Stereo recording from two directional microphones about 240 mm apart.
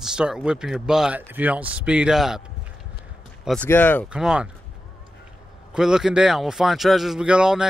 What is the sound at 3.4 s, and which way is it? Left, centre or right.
Speech, centre.